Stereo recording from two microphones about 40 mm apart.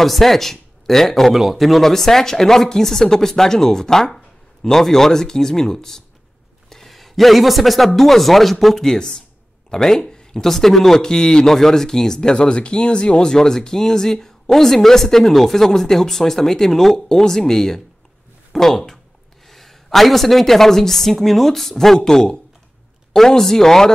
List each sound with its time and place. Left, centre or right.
0.0 s speech: centre
1.3 s speech: centre
8.8 s speech: centre